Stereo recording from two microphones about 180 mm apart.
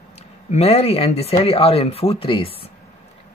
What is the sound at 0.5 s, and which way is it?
Speech, 35° left (ahead or behind).